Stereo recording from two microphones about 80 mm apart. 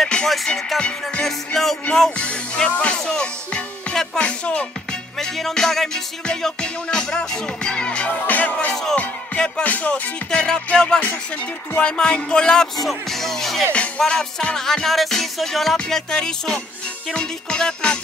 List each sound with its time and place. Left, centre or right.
0.0 s music: centre